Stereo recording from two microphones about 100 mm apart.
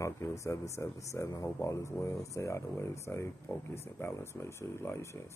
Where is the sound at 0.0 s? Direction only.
30° left (ahead or behind).